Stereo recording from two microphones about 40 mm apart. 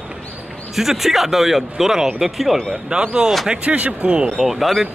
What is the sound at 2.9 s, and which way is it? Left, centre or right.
Speech, right.